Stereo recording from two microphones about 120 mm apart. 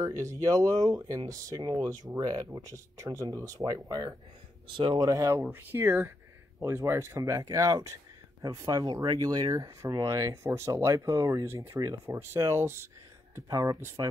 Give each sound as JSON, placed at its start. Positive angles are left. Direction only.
{"t": 0.2, "sound": "speech", "side_deg": -30}